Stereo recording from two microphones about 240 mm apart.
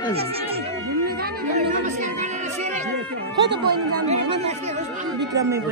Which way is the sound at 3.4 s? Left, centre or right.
Right.